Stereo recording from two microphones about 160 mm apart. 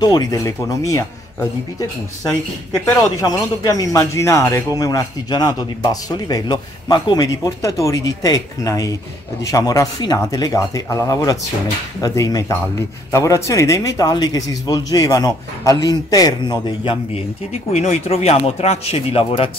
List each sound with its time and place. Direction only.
0.0 s speech: 25° left (ahead or behind)
2.8 s speech: 20° left (ahead or behind)
17.7 s speech: 45° left (ahead or behind)